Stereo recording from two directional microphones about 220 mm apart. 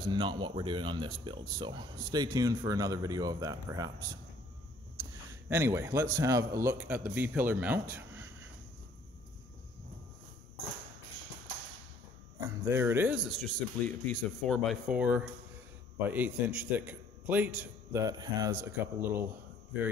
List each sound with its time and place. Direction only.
0.1 s a man's voice: 20° right (ahead or behind)
5.5 s a man's voice: 10° right (ahead or behind)
12.4 s a man's voice: 10° right (ahead or behind)
18.0 s a man's voice: 15° right (ahead or behind)